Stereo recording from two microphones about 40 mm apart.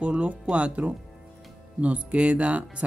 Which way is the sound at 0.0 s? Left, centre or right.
Right.